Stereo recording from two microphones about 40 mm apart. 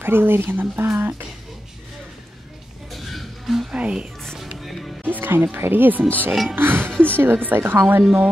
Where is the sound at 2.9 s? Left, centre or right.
Centre.